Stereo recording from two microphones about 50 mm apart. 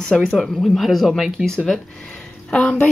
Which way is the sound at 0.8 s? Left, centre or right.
Centre.